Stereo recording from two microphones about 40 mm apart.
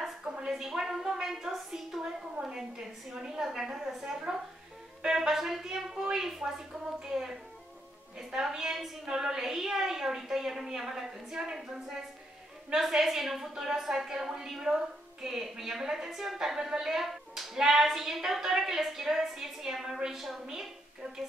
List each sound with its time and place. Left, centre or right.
0.5 s a woman's voice: centre
3.2 s a woman's voice: centre
8.3 s a woman's voice: centre
12.7 s a woman's voice: centre